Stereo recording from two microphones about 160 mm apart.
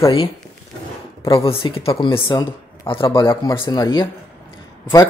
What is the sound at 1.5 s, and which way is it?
A man's voice, 35° left (ahead or behind).